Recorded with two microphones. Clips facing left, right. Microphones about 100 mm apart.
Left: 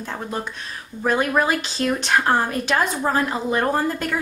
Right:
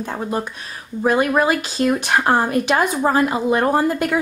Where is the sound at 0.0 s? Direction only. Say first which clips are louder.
Right 5 dB; 15° right (ahead or behind).